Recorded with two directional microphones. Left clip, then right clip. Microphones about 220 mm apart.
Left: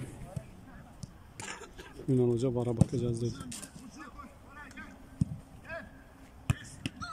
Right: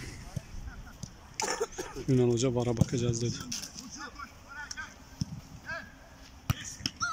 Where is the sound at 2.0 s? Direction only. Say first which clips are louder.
Right 2 dB; 10° left (ahead or behind).